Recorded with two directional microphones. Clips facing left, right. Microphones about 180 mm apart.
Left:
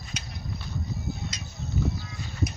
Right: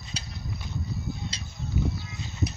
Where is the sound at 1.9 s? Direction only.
25° right (ahead or behind).